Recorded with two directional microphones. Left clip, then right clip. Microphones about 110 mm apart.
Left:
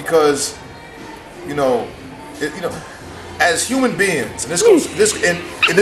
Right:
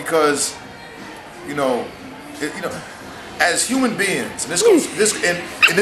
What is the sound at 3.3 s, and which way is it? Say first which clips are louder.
A man's voice: left 2 dB; centre (ahead or behind).